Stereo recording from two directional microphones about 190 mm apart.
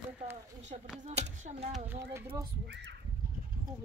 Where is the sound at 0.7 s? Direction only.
40° right (ahead or behind).